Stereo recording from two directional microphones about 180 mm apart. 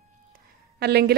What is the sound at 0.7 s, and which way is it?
Speech, 65° right (ahead or behind).